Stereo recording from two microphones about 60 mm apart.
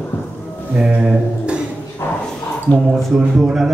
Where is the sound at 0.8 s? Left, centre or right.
Centre.